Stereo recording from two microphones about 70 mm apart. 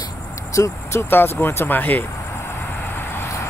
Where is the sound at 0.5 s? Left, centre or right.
Left.